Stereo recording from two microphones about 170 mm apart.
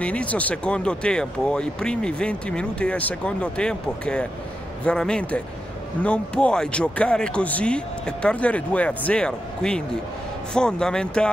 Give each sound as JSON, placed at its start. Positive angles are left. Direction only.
{"t": 0.0, "sound": "speech", "side_deg": 10}